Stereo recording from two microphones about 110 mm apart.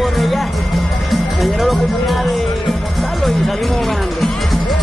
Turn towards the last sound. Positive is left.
turn(degrees=0)  # may be behind; listen again after turning